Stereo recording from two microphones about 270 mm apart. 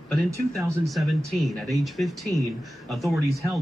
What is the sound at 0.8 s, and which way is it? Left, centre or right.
Speech, centre.